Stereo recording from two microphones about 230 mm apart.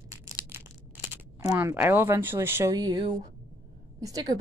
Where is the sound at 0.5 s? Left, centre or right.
Centre.